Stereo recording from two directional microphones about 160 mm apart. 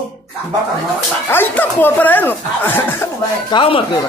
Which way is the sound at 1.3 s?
10° left (ahead or behind).